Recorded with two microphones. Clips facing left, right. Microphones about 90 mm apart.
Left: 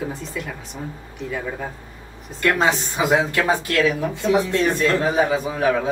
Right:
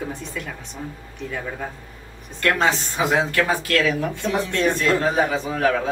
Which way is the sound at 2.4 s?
10° left (ahead or behind).